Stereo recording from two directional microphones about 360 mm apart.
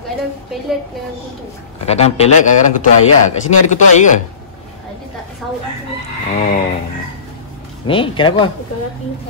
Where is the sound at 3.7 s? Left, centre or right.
Centre.